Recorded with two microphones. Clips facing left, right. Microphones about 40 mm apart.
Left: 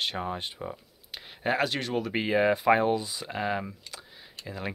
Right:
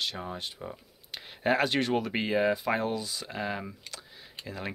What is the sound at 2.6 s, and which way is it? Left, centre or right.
Speech, left.